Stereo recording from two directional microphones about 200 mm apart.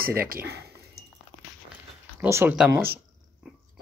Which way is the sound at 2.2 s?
10° right (ahead or behind).